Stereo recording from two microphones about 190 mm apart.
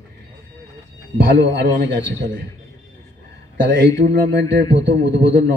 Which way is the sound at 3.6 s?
65° right (ahead or behind).